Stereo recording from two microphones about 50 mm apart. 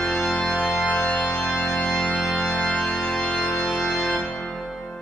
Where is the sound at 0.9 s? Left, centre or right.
Left.